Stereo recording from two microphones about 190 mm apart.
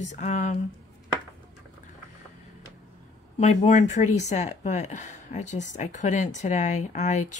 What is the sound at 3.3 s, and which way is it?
Speech, 35° left (ahead or behind).